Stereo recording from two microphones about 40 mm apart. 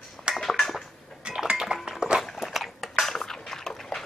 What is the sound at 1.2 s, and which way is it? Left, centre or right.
Music, right.